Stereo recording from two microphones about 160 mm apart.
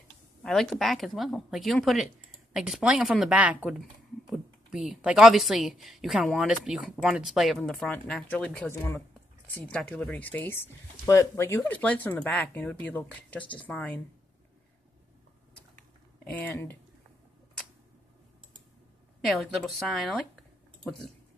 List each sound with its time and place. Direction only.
0.4 s speech: centre (ahead or behind)
16.3 s speech: 10° left (ahead or behind)
19.2 s speech: centre (ahead or behind)